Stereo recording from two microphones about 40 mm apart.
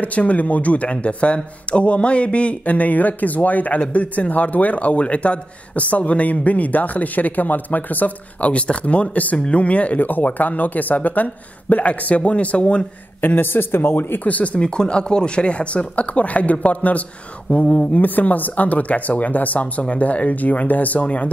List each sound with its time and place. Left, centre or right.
0.0 s a man's voice: left
13.2 s speech: left
14.2 s a man's voice: left
14.7 s a man's voice: left
17.9 s a man's voice: left
21.0 s speech: left